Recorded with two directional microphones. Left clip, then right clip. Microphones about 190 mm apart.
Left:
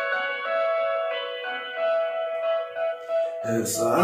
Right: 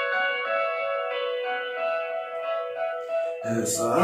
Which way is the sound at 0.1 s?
20° left (ahead or behind).